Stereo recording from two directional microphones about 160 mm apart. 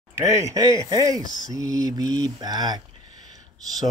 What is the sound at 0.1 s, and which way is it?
Speech, 15° right (ahead or behind).